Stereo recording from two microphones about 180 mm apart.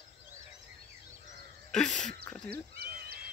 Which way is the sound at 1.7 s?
5° left (ahead or behind).